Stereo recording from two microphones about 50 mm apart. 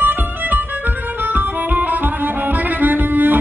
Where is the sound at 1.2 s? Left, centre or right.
Right.